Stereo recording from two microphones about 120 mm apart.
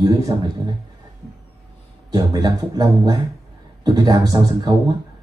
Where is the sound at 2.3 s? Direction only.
30° right (ahead or behind).